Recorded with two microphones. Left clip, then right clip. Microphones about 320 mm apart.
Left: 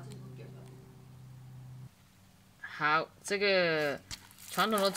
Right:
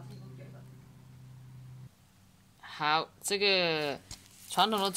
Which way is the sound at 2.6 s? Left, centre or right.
Centre.